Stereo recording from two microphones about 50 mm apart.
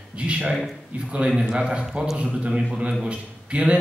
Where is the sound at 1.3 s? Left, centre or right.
Centre.